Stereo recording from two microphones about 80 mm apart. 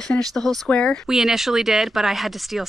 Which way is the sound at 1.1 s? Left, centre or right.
Centre.